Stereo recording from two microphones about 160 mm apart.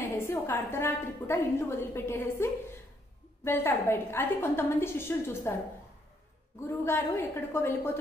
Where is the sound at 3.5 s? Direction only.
15° left (ahead or behind).